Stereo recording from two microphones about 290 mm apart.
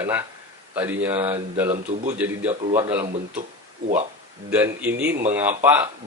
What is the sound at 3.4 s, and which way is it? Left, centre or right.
Speech, right.